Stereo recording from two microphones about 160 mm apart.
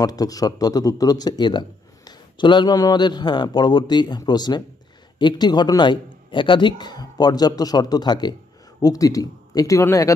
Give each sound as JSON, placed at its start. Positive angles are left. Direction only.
{"t": 0.0, "sound": "speech", "side_deg": 25}